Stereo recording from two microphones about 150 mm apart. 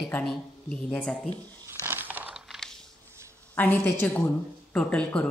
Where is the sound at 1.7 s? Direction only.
15° right (ahead or behind).